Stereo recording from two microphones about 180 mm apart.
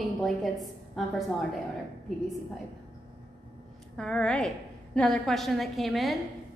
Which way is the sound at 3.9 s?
5° left (ahead or behind).